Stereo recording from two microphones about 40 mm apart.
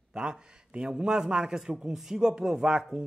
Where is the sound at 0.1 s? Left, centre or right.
Right.